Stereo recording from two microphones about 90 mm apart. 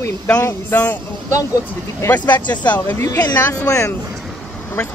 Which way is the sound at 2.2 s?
50° left (ahead or behind).